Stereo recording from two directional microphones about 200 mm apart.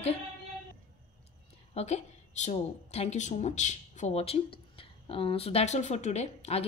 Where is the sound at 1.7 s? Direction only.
30° left (ahead or behind).